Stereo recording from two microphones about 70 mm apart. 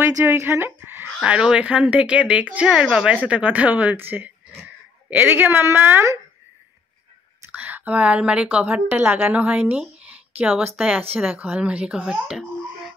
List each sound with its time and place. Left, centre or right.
0.2 s speech: right
1.2 s speech: centre
7.5 s a woman's voice: right; by 12.9 s centre